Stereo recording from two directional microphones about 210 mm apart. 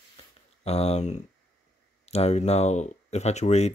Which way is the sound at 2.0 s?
30° left (ahead or behind).